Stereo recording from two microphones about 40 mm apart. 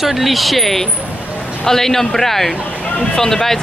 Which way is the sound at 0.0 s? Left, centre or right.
Centre.